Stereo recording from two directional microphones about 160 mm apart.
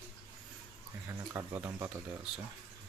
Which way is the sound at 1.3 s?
20° right (ahead or behind).